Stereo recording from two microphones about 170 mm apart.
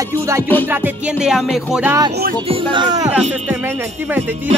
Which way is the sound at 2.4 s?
30° right (ahead or behind).